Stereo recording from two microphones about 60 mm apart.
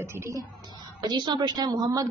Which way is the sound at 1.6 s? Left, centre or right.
Right.